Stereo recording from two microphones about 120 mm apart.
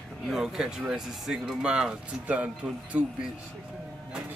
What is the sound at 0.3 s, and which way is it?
Speech, 5° right (ahead or behind).